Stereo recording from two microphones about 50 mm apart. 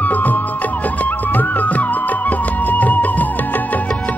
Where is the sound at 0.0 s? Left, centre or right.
Left.